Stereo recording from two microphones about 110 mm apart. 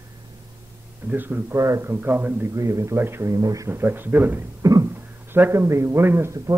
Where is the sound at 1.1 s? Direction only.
15° right (ahead or behind).